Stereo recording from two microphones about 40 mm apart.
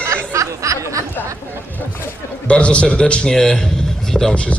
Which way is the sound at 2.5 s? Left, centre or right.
Left.